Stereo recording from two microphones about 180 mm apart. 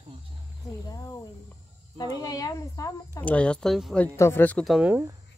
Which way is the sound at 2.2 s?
20° left (ahead or behind).